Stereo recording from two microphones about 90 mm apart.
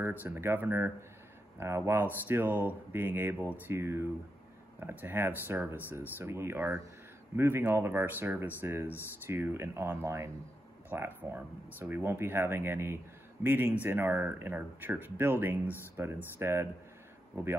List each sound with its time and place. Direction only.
0.0 s speech: 20° right (ahead or behind)